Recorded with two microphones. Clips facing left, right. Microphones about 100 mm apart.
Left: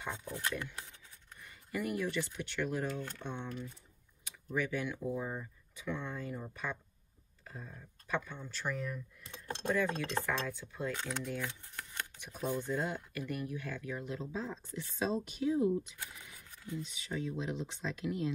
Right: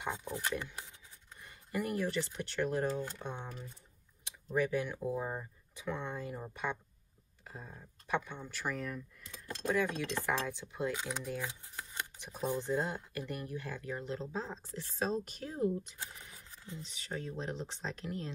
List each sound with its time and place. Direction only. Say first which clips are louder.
0.0 s speech: right 2 dB; 20° right (ahead or behind)
1.4 s speech: right 1 dB; 35° right (ahead or behind)
3.0 s speech: right 3 dB; 15° right (ahead or behind)
4.6 s speech: right 2 dB; 35° right (ahead or behind)
5.0 s speech: right 1 dB; 25° right (ahead or behind)
8.7 s speech: even; centre (ahead or behind)
9.6 s speech: right 1 dB; 35° left (ahead or behind)
10.2 s speech: right 1 dB; 15° right (ahead or behind)
12.2 s speech: right 1 dB; 30° right (ahead or behind)
14.8 s speech: even; 45° right (ahead or behind)
16.0 s a sound: right 1 dB; 35° right (ahead or behind)
16.9 s speech: even; 40° right (ahead or behind)